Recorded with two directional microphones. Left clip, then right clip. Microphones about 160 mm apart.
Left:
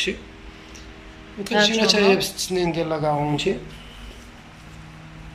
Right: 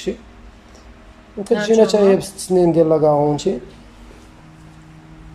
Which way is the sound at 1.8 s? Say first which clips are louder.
Right 5 dB; 55° right (ahead or behind).